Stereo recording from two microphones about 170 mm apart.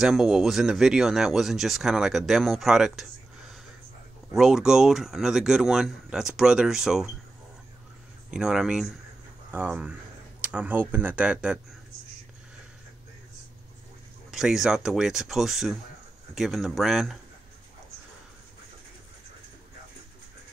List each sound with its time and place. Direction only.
0.0 s speech: centre (ahead or behind)
4.3 s speech: centre (ahead or behind)
8.3 s speech: 5° right (ahead or behind)
14.3 s speech: 5° right (ahead or behind)